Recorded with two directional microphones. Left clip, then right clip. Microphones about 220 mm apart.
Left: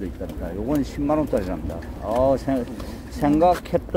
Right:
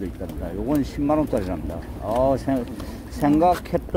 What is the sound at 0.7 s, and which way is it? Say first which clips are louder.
Speech: right 1 dB; 10° right (ahead or behind).